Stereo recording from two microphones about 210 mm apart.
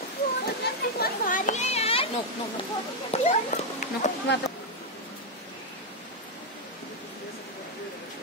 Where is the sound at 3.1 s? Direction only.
35° left (ahead or behind).